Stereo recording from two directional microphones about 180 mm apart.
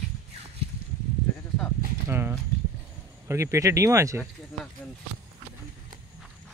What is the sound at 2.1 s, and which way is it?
Clip-clop, 10° right (ahead or behind).